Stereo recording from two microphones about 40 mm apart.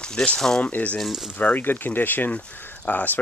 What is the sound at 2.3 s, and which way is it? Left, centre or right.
Speech, left.